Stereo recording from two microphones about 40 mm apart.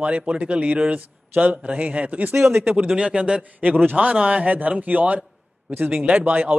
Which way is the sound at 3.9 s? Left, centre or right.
Right.